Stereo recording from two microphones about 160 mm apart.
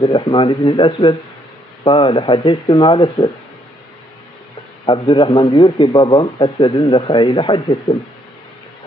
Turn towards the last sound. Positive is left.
turn(degrees=30)  # may be behind; listen again after turning